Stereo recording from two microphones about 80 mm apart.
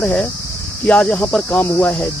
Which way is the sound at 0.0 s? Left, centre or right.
Centre.